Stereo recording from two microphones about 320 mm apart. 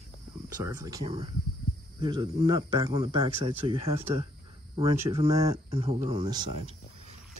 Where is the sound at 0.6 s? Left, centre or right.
Centre.